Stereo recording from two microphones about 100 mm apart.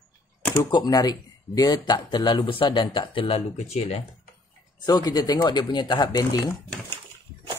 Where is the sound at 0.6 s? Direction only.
40° left (ahead or behind); by 4.0 s 90° left.